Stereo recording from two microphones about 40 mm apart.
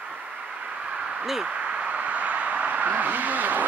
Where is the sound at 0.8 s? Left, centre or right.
Right.